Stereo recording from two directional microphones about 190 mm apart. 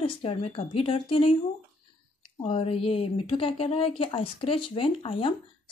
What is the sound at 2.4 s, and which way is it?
Speech, 30° left (ahead or behind).